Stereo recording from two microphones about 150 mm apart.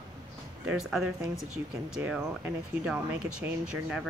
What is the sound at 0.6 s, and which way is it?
Speech, 5° right (ahead or behind).